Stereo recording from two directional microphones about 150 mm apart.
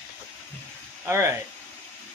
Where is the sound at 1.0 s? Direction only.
15° right (ahead or behind).